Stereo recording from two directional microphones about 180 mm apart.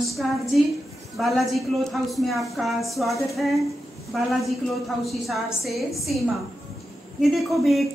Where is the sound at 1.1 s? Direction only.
Centre (ahead or behind).